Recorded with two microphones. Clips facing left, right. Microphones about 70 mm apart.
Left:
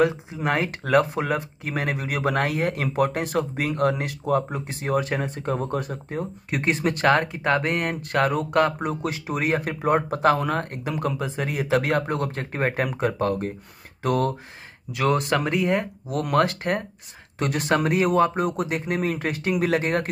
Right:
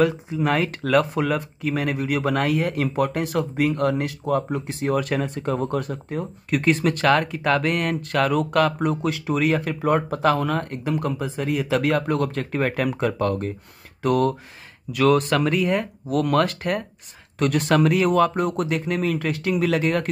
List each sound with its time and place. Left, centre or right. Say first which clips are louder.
0.0 s speech: right 1 dB; left
14.0 s speech: right 3 dB; left
18.4 s speech: right 1 dB; centre
18.7 s speech: right 2 dB; left